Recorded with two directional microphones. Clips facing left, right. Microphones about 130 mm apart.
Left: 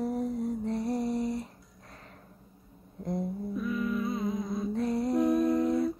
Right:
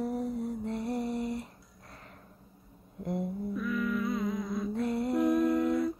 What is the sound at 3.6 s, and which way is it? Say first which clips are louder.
Music: left 1 dB; 25° left (ahead or behind).